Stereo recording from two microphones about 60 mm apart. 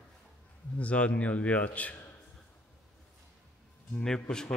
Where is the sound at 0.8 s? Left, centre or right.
Left.